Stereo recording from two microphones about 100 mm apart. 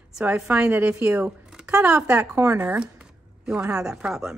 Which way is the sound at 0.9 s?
25° right (ahead or behind).